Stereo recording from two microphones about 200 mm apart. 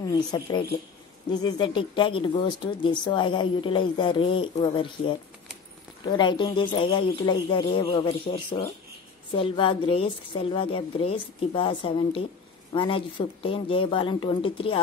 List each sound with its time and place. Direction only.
0.0 s speech: 20° left (ahead or behind)